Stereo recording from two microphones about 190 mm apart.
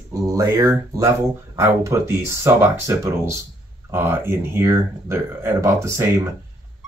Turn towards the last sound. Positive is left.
turn(degrees=-15)  # may be behind; listen again after turning